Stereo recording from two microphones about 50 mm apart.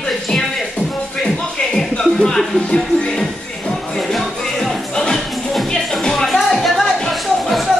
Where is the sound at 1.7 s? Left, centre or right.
Centre.